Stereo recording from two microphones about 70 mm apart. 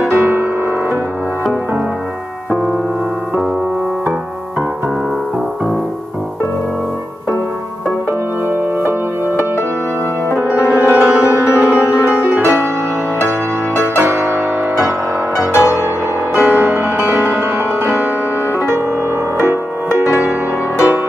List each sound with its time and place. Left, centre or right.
0.0 s music: right
10.5 s music: right
11.3 s music: left
13.7 s music: right
15.5 s music: left
16.3 s music: right
19.3 s music: right